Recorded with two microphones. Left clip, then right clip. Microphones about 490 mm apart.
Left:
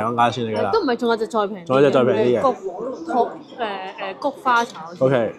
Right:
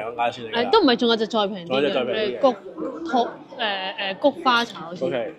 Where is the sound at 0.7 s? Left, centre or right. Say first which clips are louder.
Right 4 dB; centre.